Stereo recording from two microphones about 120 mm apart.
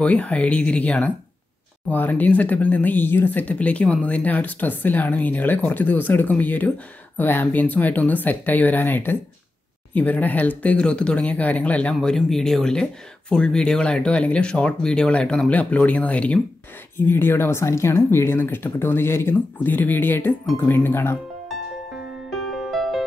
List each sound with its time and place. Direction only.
0.0 s speech: 10° left (ahead or behind)
21.5 s music: centre (ahead or behind)